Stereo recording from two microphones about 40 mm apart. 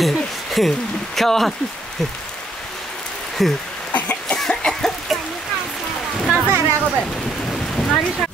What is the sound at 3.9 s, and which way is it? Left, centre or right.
Cough, left.